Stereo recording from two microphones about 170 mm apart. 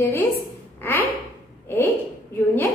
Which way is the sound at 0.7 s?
15° left (ahead or behind).